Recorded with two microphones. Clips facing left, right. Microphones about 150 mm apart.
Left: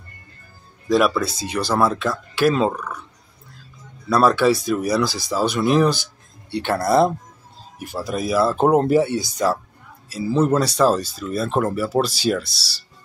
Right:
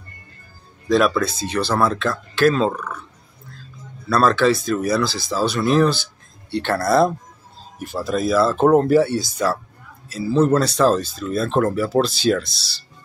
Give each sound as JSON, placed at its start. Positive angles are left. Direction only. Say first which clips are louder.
{"t": 0.8, "sound": "speech", "louder": "right 1 dB", "side_deg": 10}
{"t": 4.1, "sound": "speech", "louder": "even", "side_deg": 10}